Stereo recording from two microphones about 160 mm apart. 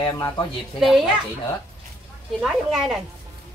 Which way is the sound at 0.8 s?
Centre (ahead or behind).